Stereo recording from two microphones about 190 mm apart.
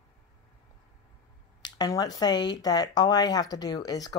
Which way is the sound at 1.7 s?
20° left (ahead or behind).